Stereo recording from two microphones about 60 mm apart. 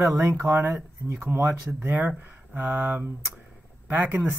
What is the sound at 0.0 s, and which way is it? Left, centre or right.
Speech, right.